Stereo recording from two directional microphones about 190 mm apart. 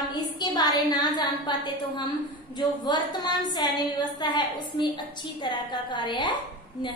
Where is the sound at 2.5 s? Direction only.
20° left (ahead or behind).